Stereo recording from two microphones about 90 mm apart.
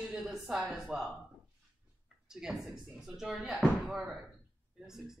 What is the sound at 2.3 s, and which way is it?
Speech, 5° right (ahead or behind).